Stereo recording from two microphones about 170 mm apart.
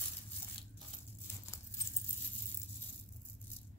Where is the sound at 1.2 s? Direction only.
15° left (ahead or behind).